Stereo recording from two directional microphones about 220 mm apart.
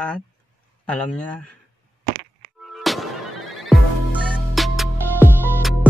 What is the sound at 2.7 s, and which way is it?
Music, centre (ahead or behind).